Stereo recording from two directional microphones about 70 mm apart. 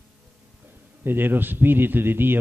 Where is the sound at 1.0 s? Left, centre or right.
Right.